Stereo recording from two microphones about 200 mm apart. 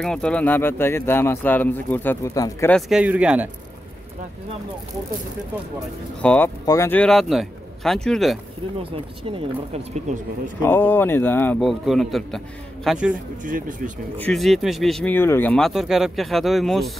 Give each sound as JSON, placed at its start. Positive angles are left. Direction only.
{"t": 0.0, "sound": "speech", "side_deg": 5}
{"t": 2.7, "sound": "speech", "side_deg": -5}
{"t": 6.2, "sound": "speech", "side_deg": 10}
{"t": 9.7, "sound": "speech", "side_deg": -35}
{"t": 10.6, "sound": "speech", "side_deg": 10}
{"t": 13.4, "sound": "speech", "side_deg": -40}
{"t": 14.1, "sound": "speech", "side_deg": 5}